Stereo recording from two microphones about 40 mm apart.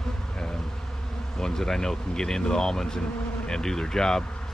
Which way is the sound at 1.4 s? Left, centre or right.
Centre.